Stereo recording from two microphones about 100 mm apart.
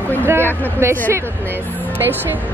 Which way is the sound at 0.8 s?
25° right (ahead or behind).